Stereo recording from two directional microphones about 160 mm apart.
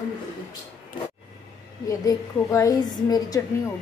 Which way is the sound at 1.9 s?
20° left (ahead or behind).